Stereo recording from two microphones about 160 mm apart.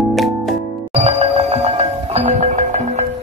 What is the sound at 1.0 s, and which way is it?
Music, 40° right (ahead or behind).